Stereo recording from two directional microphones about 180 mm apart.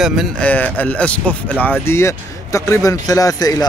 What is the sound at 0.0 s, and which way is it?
Speech, centre (ahead or behind).